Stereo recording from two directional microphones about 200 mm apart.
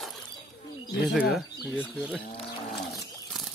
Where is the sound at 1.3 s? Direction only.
5° right (ahead or behind).